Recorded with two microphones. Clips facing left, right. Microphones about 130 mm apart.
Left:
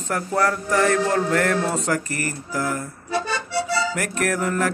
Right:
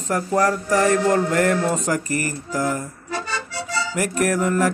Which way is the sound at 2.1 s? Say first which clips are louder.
Right 3 dB; 50° left (ahead or behind).